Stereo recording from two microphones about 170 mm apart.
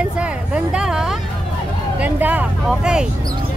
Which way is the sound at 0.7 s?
5° right (ahead or behind).